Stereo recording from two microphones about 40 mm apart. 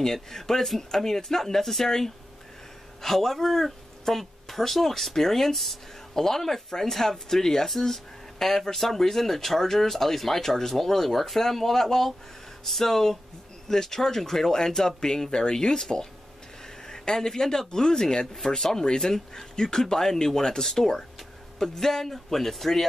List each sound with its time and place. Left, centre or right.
0.0 s speech: centre